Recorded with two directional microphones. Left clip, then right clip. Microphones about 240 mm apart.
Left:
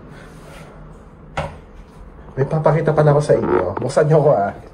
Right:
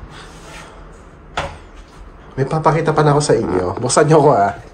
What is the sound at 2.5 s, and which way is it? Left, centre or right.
A man's voice, centre.